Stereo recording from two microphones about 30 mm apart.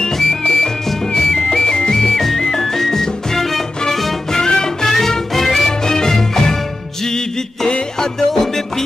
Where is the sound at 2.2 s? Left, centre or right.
Centre.